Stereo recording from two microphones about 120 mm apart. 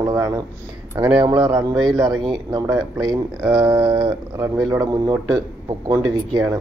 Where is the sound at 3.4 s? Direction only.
35° right (ahead or behind).